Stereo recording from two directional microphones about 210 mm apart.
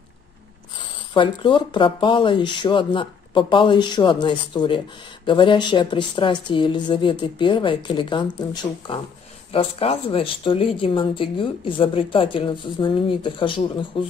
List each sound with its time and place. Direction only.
0.7 s speech: 25° left (ahead or behind)
9.5 s speech: 25° left (ahead or behind)